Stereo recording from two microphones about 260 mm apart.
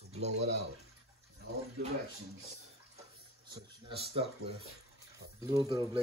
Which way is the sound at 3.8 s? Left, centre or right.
Right.